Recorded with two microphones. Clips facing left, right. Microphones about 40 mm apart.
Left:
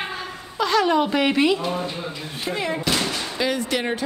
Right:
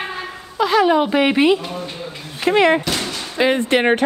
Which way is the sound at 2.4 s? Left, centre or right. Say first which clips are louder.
Right 12 dB; right.